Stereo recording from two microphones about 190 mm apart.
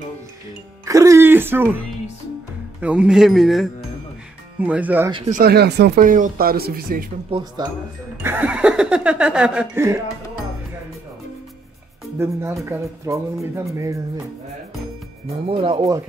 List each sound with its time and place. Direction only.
0.8 s music: 15° right (ahead or behind)
2.8 s speech: 5° right (ahead or behind)
5.1 s speech: 35° right (ahead or behind)
5.4 s speech: 60° right (ahead or behind)
7.2 s speech: 25° right (ahead or behind)
8.2 s speech: 10° right (ahead or behind)
12.2 s speech: 15° right (ahead or behind)
15.2 s speech: 30° right (ahead or behind)